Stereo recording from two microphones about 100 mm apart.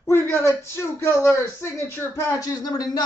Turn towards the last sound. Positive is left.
turn(degrees=40)  # may be behind; listen again after turning